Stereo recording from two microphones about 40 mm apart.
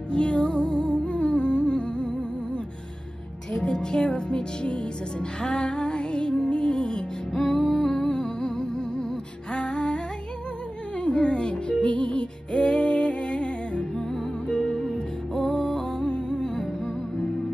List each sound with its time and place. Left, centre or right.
0.1 s music: left
11.0 s music: left
14.5 s music: centre
16.1 s music: left